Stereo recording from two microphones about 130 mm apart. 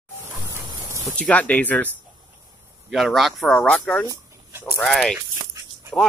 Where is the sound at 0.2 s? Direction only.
20° right (ahead or behind).